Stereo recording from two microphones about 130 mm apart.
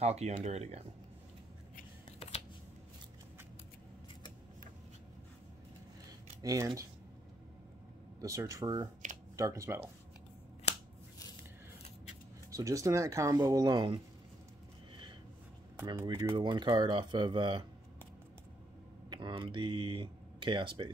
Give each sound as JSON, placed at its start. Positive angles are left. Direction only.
{"t": 0.0, "sound": "speech", "side_deg": -55}
{"t": 6.4, "sound": "speech", "side_deg": -25}
{"t": 8.2, "sound": "speech", "side_deg": -25}
{"t": 12.4, "sound": "speech", "side_deg": -25}
{"t": 16.0, "sound": "speech", "side_deg": -20}
{"t": 19.0, "sound": "speech", "side_deg": -35}